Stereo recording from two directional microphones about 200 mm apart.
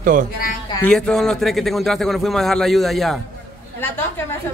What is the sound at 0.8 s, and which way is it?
A man's voice, 5° left (ahead or behind).